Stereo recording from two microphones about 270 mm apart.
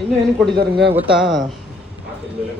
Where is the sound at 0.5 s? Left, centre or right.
Right.